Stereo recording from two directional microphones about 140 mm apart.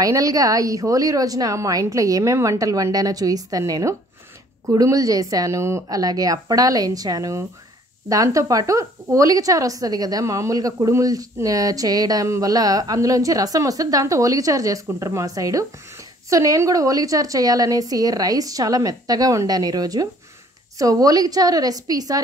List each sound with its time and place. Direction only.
0.0 s speech: 25° right (ahead or behind)